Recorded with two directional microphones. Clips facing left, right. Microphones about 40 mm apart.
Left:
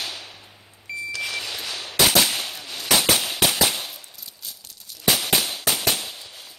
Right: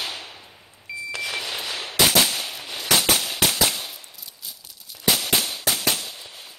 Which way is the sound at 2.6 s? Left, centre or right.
Centre.